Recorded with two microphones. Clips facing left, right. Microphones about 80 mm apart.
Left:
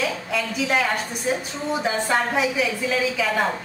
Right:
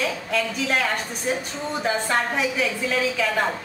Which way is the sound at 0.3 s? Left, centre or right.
Centre.